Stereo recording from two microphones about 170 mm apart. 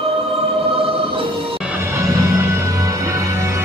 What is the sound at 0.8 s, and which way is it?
Music, 30° right (ahead or behind).